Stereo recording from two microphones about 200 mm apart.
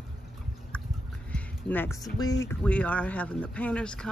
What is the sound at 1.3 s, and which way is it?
Music, 10° left (ahead or behind).